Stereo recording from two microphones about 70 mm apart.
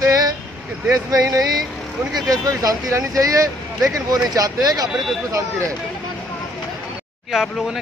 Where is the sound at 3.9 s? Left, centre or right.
Right.